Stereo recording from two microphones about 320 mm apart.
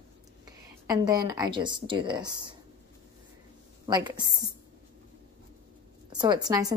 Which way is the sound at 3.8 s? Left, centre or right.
Centre.